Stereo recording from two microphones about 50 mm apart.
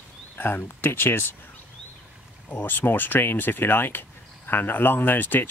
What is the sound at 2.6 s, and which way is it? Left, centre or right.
Speech, left.